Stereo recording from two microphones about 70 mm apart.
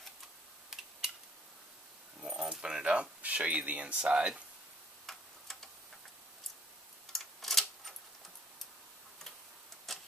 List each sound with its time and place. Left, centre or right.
2.2 s keys jangling: centre
5.0 s tick-tock: centre
7.1 s typewriter: centre
9.9 s clock: centre